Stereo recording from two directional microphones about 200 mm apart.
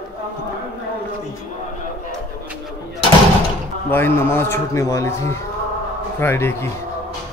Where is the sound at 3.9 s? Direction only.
10° left (ahead or behind).